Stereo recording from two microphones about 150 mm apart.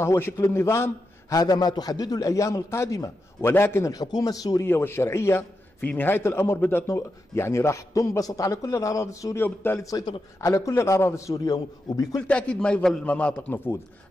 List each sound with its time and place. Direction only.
0.0 s a man's voice: 15° left (ahead or behind)
12.3 s a man's voice: 5° left (ahead or behind)